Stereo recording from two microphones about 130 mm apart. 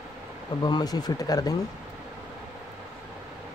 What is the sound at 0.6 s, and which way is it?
Speech, 30° left (ahead or behind).